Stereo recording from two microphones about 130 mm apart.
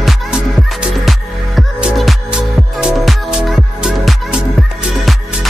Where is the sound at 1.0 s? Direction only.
5° right (ahead or behind).